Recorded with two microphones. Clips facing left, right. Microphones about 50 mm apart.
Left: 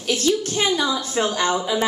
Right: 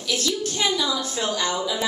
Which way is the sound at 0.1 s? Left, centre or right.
Left.